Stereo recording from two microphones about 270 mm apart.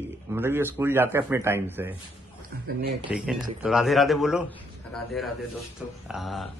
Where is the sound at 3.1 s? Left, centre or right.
Centre.